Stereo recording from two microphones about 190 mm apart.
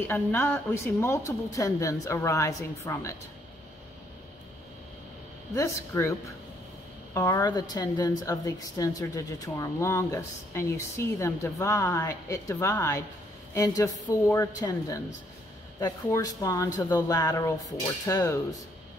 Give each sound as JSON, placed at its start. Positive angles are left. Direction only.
{"t": 0.1, "sound": "a woman's voice", "side_deg": 10}
{"t": 5.5, "sound": "a woman's voice", "side_deg": 15}
{"t": 14.2, "sound": "a woman's voice", "side_deg": 15}